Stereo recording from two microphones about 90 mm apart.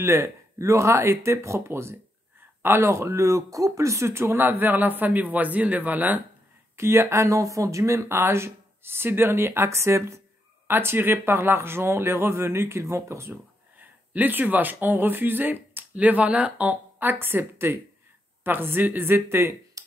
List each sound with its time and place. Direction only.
0.0 s speech: 30° right (ahead or behind)
6.8 s speech: 30° right (ahead or behind)
13.7 s speech: 20° right (ahead or behind)